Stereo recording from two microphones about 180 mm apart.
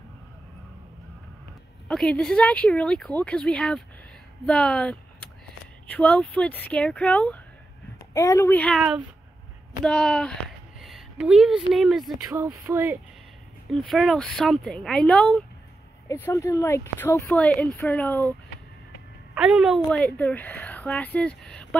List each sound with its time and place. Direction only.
1.9 s a woman's voice: 5° left (ahead or behind)
8.1 s a woman's voice: 20° left (ahead or behind)
8.5 s speech: 5° left (ahead or behind)
9.8 s a woman's voice: 5° left (ahead or behind)
10.8 s a sound: centre (ahead or behind)
11.7 s a woman's voice: centre (ahead or behind)
12.3 s speech: 20° right (ahead or behind)
13.7 s a woman's voice: centre (ahead or behind)
16.1 s speech: 15° left (ahead or behind)
19.3 s a woman's voice: 5° right (ahead or behind)